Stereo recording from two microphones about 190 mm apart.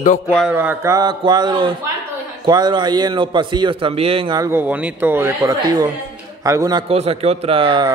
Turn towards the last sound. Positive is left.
turn(degrees=-25)  # may be behind; listen again after turning